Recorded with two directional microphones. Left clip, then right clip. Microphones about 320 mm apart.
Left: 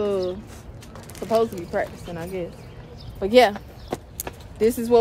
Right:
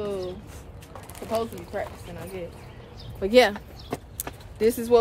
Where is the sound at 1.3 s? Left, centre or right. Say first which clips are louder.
Left 7 dB; left.